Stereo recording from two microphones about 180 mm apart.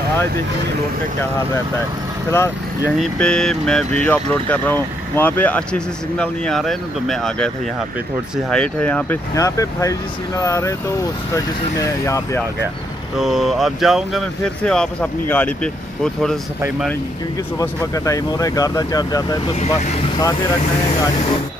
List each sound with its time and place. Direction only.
3.0 s speech: 5° left (ahead or behind)
13.2 s speech: centre (ahead or behind)
17.6 s speech: 20° left (ahead or behind)
19.6 s speech: 40° left (ahead or behind)